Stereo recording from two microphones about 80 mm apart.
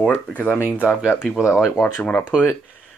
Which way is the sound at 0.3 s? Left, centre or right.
Centre.